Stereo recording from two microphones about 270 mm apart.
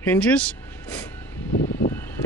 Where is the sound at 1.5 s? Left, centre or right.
Left.